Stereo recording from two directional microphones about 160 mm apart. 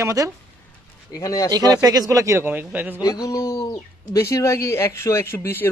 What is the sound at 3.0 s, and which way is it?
A man's voice, 20° left (ahead or behind).